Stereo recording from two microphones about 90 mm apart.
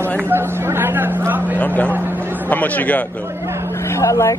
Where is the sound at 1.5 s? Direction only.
15° left (ahead or behind).